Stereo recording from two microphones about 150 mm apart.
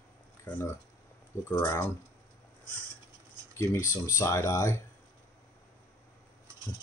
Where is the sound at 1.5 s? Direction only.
20° left (ahead or behind).